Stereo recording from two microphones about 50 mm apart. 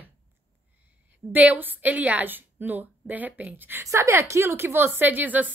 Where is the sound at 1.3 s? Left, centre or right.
Right.